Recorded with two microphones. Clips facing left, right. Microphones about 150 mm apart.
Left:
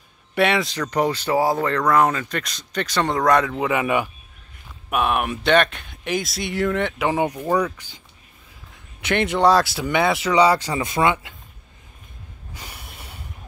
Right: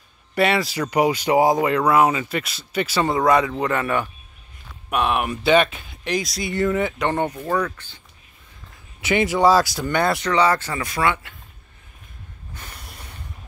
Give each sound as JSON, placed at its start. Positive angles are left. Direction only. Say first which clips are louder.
{"t": 0.3, "sound": "speech", "louder": "even", "side_deg": 0}
{"t": 9.0, "sound": "speech", "louder": "right 1 dB", "side_deg": 0}
{"t": 12.5, "sound": "a sound", "louder": "left 1 dB", "side_deg": 10}